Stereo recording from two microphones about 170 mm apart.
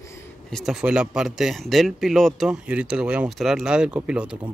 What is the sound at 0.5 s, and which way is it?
Speech, centre (ahead or behind).